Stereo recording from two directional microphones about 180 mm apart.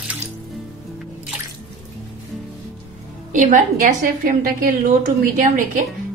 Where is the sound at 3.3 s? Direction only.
45° right (ahead or behind).